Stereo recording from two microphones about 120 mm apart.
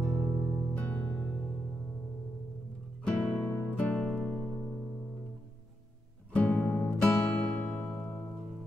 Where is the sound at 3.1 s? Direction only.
5° left (ahead or behind).